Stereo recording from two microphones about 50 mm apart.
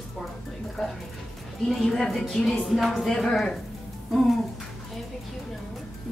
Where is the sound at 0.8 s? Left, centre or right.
Centre.